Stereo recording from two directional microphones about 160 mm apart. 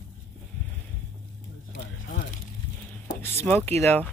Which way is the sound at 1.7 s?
60° left (ahead or behind).